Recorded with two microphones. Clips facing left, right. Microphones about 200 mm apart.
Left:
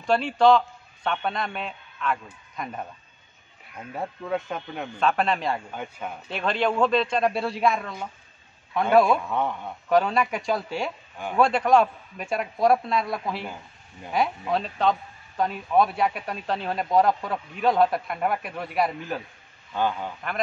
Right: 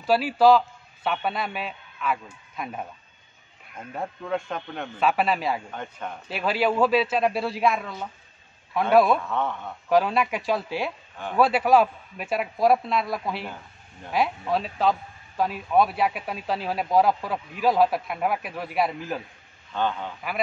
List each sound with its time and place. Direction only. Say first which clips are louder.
0.0 s a man's voice: right 1 dB; 5° right (ahead or behind)
5.7 s a man's voice: left 1 dB; 5° left (ahead or behind)
6.2 s a man's voice: right 1 dB; 5° right (ahead or behind)
9.2 s a man's voice: left 1 dB; 15° left (ahead or behind)
9.8 s a man's voice: even; centre (ahead or behind)
19.7 s a man's voice: left 1 dB; 10° left (ahead or behind)